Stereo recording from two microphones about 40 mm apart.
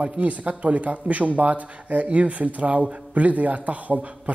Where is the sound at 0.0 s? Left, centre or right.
Right.